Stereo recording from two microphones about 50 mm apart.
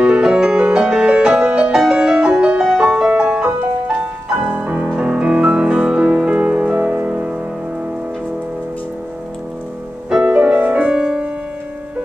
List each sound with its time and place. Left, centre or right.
0.0 s music: centre
10.0 s music: centre
11.0 s music: centre